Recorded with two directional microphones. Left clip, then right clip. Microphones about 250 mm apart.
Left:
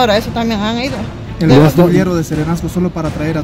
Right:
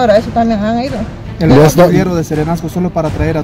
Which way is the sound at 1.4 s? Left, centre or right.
Right.